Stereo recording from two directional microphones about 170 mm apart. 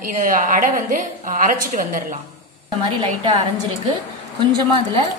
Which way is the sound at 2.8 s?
30° right (ahead or behind).